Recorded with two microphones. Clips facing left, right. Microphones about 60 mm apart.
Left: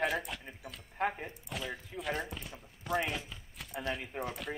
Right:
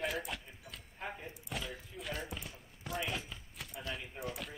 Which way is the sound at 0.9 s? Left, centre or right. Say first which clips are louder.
Left 10 dB; left.